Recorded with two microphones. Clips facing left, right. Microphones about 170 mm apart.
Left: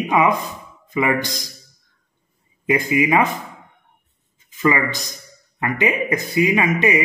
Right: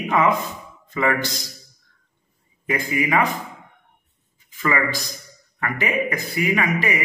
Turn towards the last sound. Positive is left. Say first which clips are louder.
# left 4 dB
turn(degrees=20)  # may be behind; listen again after turning